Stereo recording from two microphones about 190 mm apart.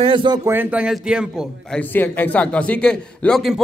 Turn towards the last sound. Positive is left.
turn(degrees=0)  # may be behind; listen again after turning